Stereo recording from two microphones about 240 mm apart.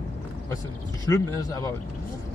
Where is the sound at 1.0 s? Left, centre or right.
Centre.